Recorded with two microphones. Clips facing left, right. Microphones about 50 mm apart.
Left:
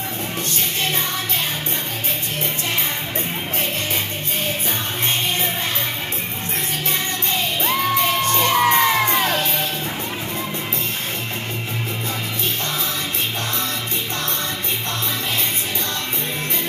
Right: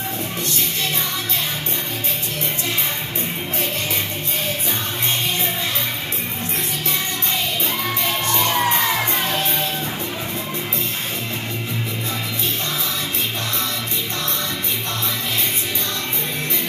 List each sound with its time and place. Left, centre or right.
7.6 s music: left